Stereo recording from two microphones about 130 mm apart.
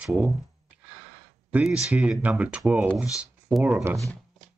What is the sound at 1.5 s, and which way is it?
Speech, 5° right (ahead or behind).